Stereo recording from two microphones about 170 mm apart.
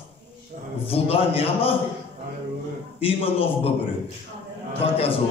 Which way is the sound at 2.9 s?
35° left (ahead or behind).